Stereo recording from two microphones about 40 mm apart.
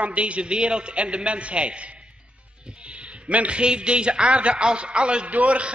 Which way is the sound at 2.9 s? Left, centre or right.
Right.